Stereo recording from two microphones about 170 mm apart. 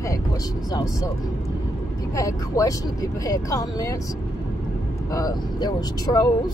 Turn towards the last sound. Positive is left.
turn(degrees=20)  # may be behind; listen again after turning